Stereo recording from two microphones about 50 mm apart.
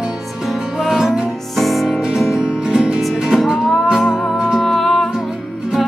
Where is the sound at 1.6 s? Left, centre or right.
Centre.